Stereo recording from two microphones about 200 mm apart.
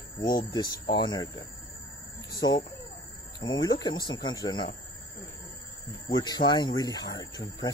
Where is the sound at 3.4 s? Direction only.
20° left (ahead or behind).